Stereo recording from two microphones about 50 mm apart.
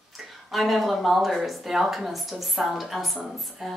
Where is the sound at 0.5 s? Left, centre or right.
Centre.